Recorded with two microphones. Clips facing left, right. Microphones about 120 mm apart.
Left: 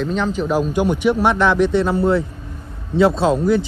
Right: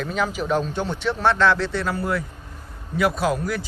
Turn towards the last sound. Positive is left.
turn(degrees=25)  # may be behind; listen again after turning